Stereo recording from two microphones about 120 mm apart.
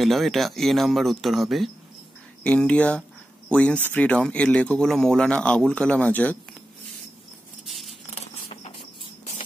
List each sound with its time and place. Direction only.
0.0 s speech: centre (ahead or behind)
7.6 s scissors: centre (ahead or behind)
8.5 s a sound: 60° left (ahead or behind)